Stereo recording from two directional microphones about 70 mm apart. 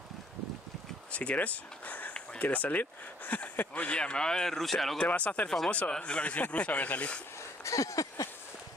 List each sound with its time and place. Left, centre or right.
1.1 s speech: centre
5.0 s speech: centre
7.3 s a sound: left